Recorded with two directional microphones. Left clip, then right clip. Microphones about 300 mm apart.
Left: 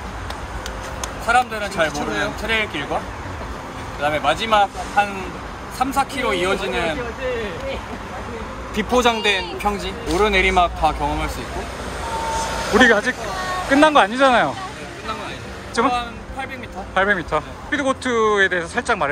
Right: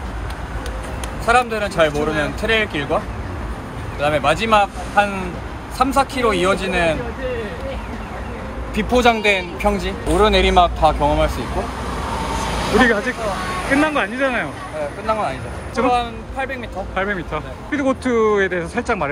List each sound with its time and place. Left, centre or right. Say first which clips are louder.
1.2 s speech: right 2 dB; centre
1.9 s speech: right 3 dB; left
2.4 s speech: right 5 dB; centre
4.0 s speech: right 2 dB; centre
8.7 s speech: right 2 dB; centre
12.7 s speech: left 2 dB; centre
15.7 s speech: right 2 dB; centre